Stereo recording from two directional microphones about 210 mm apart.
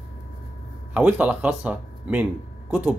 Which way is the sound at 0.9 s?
10° right (ahead or behind).